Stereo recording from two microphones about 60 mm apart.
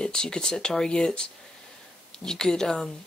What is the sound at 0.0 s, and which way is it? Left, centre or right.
Speech, centre.